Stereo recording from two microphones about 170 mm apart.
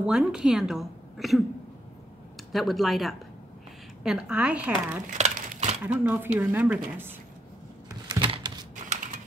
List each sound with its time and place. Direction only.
0.0 s a woman's voice: 5° right (ahead or behind)
2.5 s a woman's voice: centre (ahead or behind)
5.1 s a sound: 40° right (ahead or behind)
5.9 s a woman's voice: 10° right (ahead or behind)
7.9 s a sound: 25° right (ahead or behind)
8.8 s typing: 45° right (ahead or behind)